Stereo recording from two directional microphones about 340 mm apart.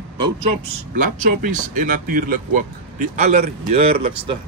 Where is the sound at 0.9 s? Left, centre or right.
Right.